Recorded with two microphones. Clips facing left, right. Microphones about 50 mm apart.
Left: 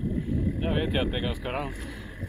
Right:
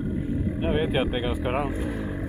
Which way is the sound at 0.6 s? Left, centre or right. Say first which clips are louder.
Right 5 dB; centre.